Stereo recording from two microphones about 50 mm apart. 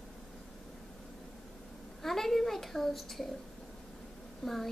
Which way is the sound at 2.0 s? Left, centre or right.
Centre.